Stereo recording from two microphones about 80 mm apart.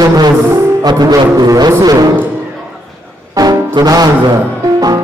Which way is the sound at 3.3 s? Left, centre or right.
Right.